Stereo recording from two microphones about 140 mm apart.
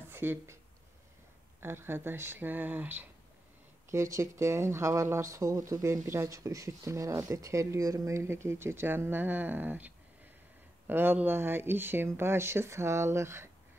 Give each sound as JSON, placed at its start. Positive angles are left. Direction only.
{"t": 0.1, "sound": "speech", "side_deg": -15}
{"t": 1.6, "sound": "speech", "side_deg": -15}